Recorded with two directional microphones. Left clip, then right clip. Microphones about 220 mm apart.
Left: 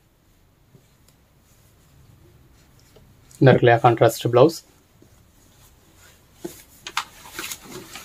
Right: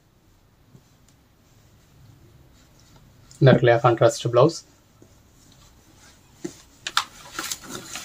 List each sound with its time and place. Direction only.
3.3 s speech: 40° left (ahead or behind)